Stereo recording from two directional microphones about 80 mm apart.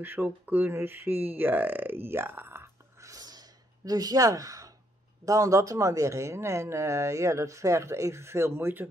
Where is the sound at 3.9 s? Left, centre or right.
Right.